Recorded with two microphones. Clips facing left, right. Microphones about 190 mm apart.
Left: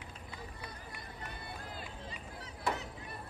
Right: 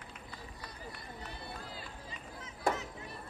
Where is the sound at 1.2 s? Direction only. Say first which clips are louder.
Even; 50° left (ahead or behind).